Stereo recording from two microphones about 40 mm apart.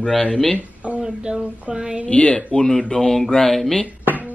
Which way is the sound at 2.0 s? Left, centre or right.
Left.